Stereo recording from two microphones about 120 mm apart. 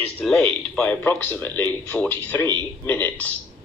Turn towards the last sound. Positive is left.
turn(degrees=15)  # may be behind; listen again after turning